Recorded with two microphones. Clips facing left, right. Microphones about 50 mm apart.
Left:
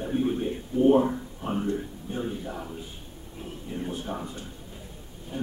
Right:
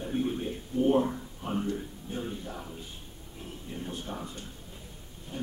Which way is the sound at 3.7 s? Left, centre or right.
Centre.